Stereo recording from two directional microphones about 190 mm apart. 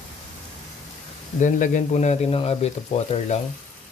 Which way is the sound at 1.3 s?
40° left (ahead or behind).